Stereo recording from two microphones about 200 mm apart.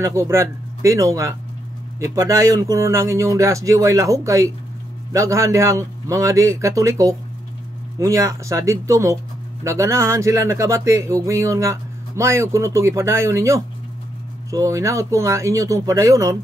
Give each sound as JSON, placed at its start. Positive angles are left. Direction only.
{"t": 0.0, "sound": "speech", "side_deg": -15}